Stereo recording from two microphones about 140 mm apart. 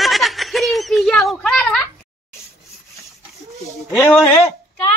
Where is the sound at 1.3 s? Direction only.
5° left (ahead or behind).